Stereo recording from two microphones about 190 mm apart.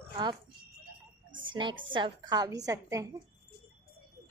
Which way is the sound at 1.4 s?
25° right (ahead or behind).